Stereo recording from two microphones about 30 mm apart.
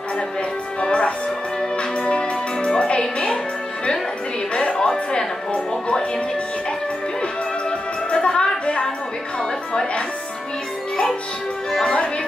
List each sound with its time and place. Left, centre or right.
1.8 s music: left
4.7 s music: left
8.1 s music: left